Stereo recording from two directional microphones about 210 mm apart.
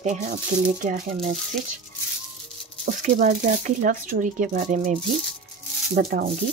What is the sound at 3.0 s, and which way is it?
Speech, 35° right (ahead or behind).